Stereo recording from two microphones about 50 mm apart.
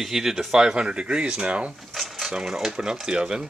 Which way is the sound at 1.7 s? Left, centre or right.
Centre.